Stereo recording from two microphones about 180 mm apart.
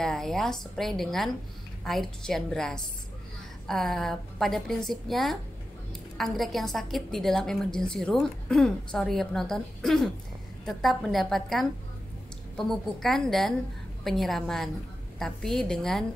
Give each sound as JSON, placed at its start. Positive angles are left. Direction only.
{"t": 0.0, "sound": "a woman's voice", "side_deg": 0}